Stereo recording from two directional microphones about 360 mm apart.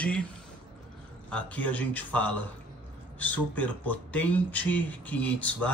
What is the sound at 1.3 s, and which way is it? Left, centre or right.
Speech, centre.